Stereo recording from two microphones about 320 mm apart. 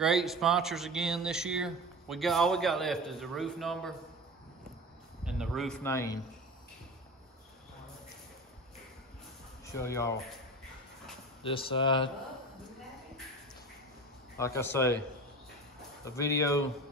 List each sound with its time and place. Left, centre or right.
0.0 s speech: centre
5.2 s speech: centre
9.8 s speech: centre
11.4 s speech: centre
14.4 s speech: centre
16.0 s speech: centre